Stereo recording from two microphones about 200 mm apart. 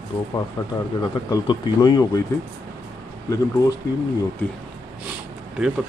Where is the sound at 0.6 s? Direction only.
15° left (ahead or behind).